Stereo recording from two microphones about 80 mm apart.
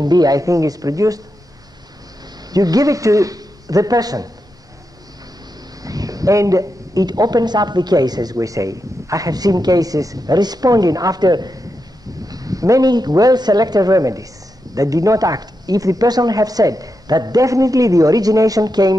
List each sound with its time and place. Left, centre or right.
0.0 s speech: right
2.5 s speech: right
5.8 s speech: right